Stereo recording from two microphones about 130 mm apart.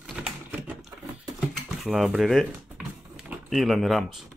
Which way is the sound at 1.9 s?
5° right (ahead or behind).